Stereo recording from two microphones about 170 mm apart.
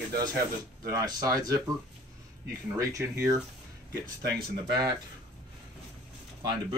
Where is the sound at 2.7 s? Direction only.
20° right (ahead or behind).